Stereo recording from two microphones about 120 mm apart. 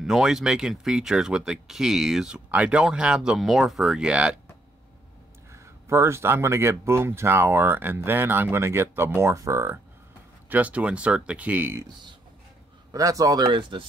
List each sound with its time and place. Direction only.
0.0 s speech: 5° right (ahead or behind)
5.5 s speech: 25° right (ahead or behind)
10.5 s speech: 10° right (ahead or behind)
12.9 s speech: 30° right (ahead or behind)